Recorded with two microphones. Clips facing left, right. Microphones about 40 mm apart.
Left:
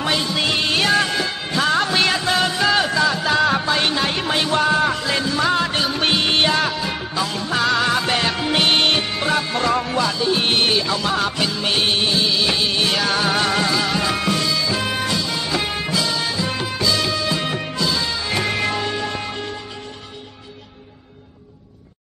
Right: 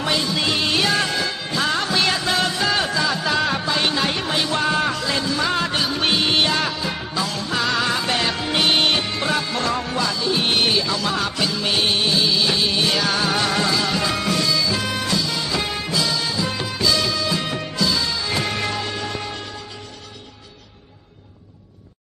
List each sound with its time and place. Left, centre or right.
0.3 s music: centre
1.8 s music: left
2.0 s music: centre
7.2 s music: centre
10.8 s music: left
11.1 s music: centre